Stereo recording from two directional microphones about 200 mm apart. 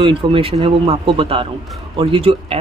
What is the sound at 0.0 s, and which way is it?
Speech, 25° right (ahead or behind).